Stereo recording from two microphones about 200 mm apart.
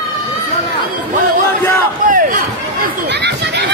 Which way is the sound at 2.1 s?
45° right (ahead or behind).